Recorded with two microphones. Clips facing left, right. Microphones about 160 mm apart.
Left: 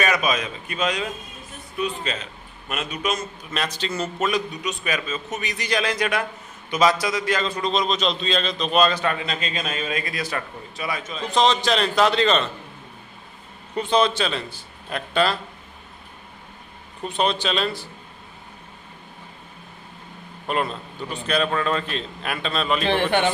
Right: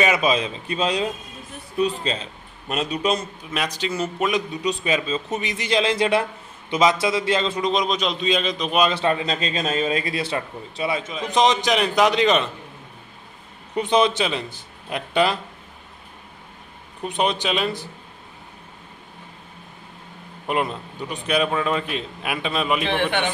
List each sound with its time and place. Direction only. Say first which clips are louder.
0.0 s a man's voice: right 3 dB; 25° right (ahead or behind)
3.5 s a man's voice: right 2 dB; 10° right (ahead or behind)
4.5 s a man's voice: right 5 dB; 25° right (ahead or behind)
8.9 s a man's voice: right 3 dB; 30° right (ahead or behind)
13.7 s a man's voice: right 1 dB; 20° right (ahead or behind)
17.0 s a man's voice: even; 15° right (ahead or behind)
20.4 s a man's voice: right 1 dB; 15° right (ahead or behind)
22.8 s a man's voice: left 2 dB; 35° left (ahead or behind)